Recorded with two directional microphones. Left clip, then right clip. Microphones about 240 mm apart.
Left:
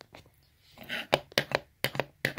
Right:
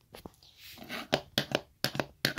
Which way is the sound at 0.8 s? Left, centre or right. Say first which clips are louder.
Left 4 dB; centre.